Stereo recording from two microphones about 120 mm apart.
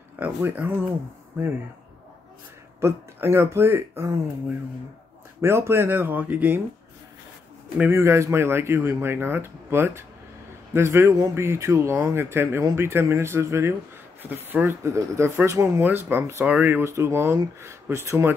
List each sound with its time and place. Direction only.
0.2 s speech: 15° right (ahead or behind)
2.8 s speech: 20° right (ahead or behind)
7.8 s speech: 20° right (ahead or behind)